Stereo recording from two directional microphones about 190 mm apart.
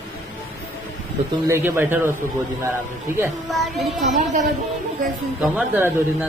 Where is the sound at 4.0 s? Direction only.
40° right (ahead or behind).